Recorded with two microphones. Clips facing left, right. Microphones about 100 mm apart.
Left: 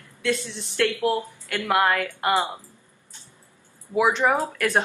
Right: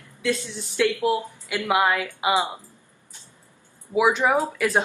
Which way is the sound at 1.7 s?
5° right (ahead or behind).